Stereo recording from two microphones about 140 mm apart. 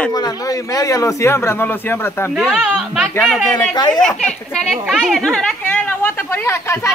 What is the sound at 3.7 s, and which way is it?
Speech, 30° left (ahead or behind).